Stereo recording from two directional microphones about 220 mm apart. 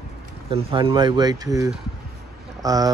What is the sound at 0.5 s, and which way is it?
Speech, 20° right (ahead or behind).